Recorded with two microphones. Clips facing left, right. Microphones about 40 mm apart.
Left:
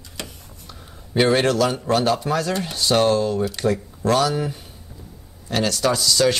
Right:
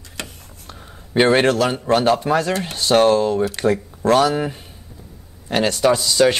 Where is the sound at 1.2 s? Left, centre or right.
Right.